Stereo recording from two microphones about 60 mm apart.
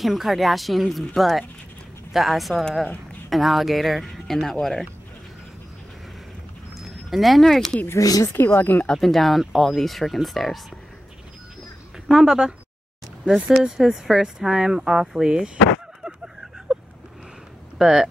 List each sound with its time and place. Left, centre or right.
0.0 s speech: centre
6.8 s speech: centre
8.0 s speech: left
8.5 s speech: left
8.9 s speech: centre
12.1 s speech: centre
16.0 s a sound: centre
17.7 s speech: centre